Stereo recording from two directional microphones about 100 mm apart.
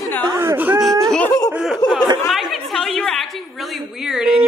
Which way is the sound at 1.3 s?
30° left (ahead or behind).